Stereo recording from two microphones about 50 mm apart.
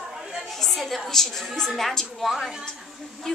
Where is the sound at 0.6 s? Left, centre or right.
Centre.